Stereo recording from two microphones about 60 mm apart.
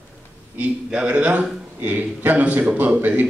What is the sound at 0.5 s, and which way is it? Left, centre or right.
A man's voice, right.